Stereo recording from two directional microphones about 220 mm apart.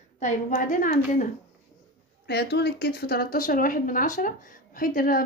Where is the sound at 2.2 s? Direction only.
50° left (ahead or behind).